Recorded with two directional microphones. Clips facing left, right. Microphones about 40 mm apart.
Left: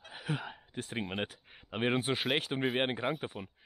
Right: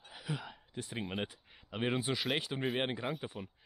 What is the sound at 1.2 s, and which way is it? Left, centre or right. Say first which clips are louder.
Speech: left 2 dB; left.